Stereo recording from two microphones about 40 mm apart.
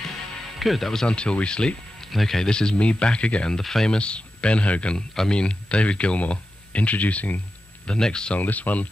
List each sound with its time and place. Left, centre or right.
0.6 s speech: centre
1.0 s speech: left
2.1 s speech: centre; by 3.5 s left
3.5 s speech: centre
3.9 s speech: left
7.8 s speech: left
8.4 s speech: left